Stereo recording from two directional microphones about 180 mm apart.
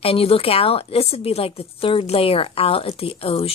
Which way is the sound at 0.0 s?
30° left (ahead or behind).